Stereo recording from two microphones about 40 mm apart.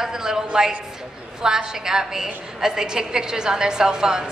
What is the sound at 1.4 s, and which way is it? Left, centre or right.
A woman's voice, centre.